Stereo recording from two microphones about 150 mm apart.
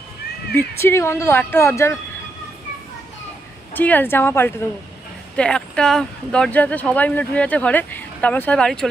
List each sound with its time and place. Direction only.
0.7 s speech: 15° left (ahead or behind)
3.7 s speech: 10° left (ahead or behind)